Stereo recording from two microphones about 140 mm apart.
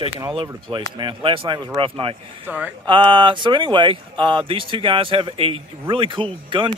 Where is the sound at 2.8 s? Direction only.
35° right (ahead or behind).